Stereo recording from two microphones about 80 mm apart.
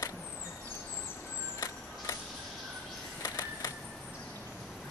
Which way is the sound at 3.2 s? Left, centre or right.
Left.